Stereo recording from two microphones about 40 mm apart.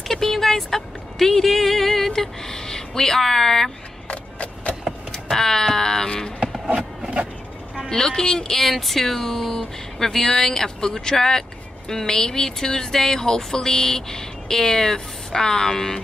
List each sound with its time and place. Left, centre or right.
0.1 s speech: centre
4.1 s a sound: left
5.3 s speech: centre
6.4 s music: centre
7.9 s speech: centre
8.5 s speech: centre